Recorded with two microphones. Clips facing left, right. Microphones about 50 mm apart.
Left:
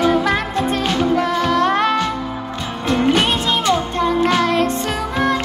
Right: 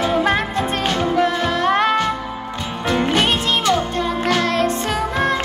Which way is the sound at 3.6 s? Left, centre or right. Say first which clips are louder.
Left 1 dB; left.